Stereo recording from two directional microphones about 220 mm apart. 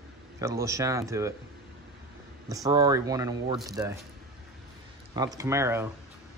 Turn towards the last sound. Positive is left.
turn(degrees=-10)  # may be behind; listen again after turning